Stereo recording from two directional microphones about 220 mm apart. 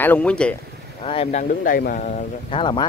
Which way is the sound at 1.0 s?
30° left (ahead or behind).